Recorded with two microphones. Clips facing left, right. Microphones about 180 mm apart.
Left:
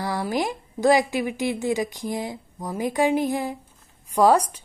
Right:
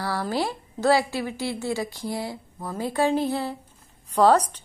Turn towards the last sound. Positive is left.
turn(degrees=10)  # may be behind; listen again after turning